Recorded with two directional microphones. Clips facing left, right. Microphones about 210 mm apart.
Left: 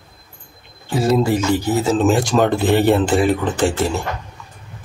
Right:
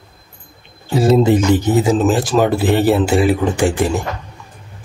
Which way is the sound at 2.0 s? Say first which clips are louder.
Right 1 dB; 5° right (ahead or behind).